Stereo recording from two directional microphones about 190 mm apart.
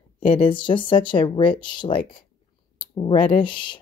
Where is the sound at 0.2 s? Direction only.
30° left (ahead or behind).